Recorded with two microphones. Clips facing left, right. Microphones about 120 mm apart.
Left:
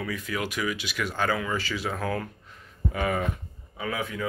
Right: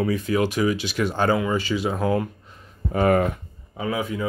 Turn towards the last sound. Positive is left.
turn(degrees=-15)  # may be behind; listen again after turning